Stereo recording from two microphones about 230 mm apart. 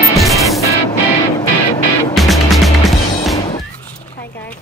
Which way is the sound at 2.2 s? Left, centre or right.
Centre.